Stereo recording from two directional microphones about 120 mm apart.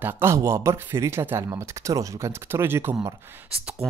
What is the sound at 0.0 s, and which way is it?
Speech, 20° right (ahead or behind).